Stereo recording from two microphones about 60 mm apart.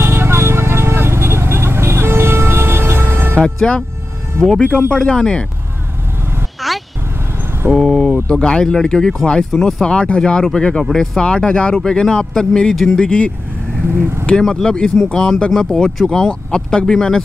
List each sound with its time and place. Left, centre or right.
0.0 s vehicle: right
3.4 s speech: centre
6.6 s vehicle: centre
7.7 s speech: centre
9.8 s speech: centre
13.8 s speech: right
14.2 s speech: centre